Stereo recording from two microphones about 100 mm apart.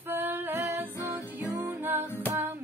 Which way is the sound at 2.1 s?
20° left (ahead or behind).